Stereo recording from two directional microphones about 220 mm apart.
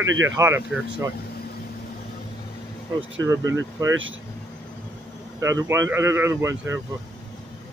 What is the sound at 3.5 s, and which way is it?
Speech, 15° right (ahead or behind).